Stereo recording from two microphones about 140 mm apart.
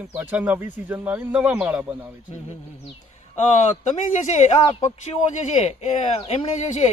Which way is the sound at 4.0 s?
60° left (ahead or behind).